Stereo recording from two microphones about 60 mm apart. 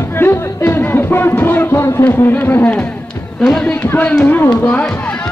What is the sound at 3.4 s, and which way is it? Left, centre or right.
Speech, centre.